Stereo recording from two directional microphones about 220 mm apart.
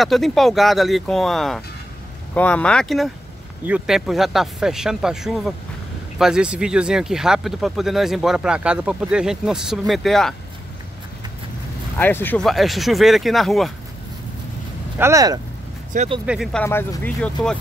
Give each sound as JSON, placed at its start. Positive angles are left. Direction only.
{"t": 0.0, "sound": "speech", "side_deg": 0}
{"t": 12.0, "sound": "speech", "side_deg": 10}
{"t": 15.0, "sound": "speech", "side_deg": -15}
{"t": 15.9, "sound": "speech", "side_deg": -30}
{"t": 16.3, "sound": "speech", "side_deg": 0}
{"t": 16.6, "sound": "speech", "side_deg": 10}